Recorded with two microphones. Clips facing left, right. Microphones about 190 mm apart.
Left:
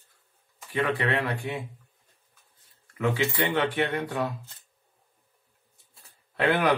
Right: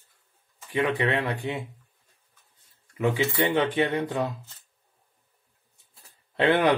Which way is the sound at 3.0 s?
15° right (ahead or behind).